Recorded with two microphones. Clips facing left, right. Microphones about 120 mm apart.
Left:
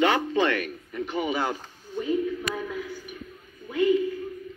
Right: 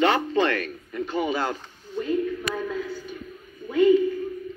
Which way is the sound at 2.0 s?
10° left (ahead or behind).